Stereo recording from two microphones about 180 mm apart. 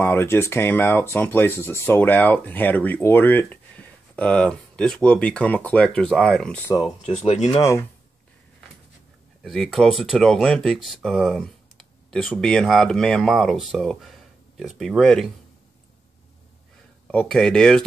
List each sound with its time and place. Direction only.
0.0 s speech: 10° left (ahead or behind)
7.2 s speech: 40° left (ahead or behind)
7.5 s speech: 15° left (ahead or behind)
9.4 s speech: centre (ahead or behind)
17.1 s speech: 5° left (ahead or behind)